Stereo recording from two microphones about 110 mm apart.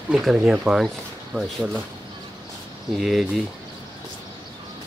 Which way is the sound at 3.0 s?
Centre (ahead or behind).